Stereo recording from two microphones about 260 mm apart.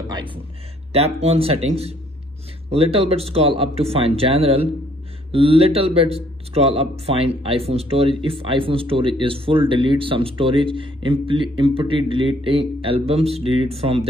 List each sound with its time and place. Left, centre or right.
0.1 s speech: centre